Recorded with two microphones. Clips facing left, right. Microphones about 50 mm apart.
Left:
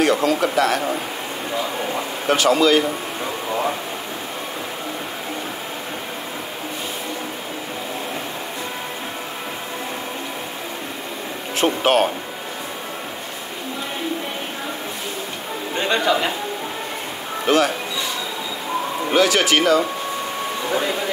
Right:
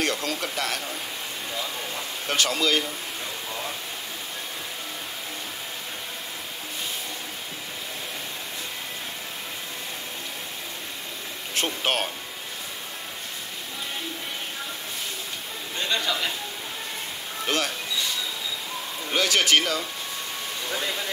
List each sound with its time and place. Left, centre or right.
0.0 s speech: centre
2.3 s speech: centre
11.6 s speech: centre
15.7 s a man's voice: left
17.5 s speech: centre
19.1 s speech: centre
20.7 s speech: left